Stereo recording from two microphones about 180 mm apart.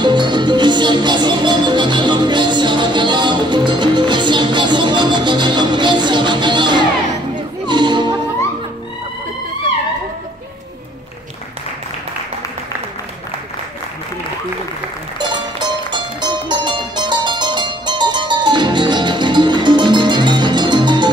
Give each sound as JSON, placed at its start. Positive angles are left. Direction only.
{"t": 0.0, "sound": "music", "side_deg": -25}
{"t": 15.1, "sound": "music", "side_deg": -25}